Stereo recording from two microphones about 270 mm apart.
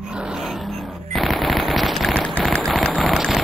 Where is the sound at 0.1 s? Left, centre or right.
Centre.